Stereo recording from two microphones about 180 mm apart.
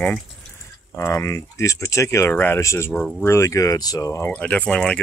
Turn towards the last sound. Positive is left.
turn(degrees=5)  # may be behind; listen again after turning